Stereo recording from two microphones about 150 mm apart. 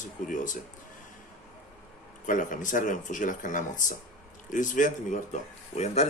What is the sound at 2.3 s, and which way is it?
Speech, 60° left (ahead or behind).